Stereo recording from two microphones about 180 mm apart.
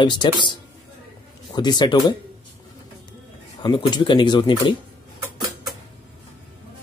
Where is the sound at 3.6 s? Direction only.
25° left (ahead or behind).